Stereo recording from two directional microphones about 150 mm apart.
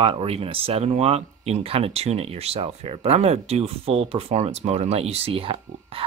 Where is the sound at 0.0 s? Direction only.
40° right (ahead or behind).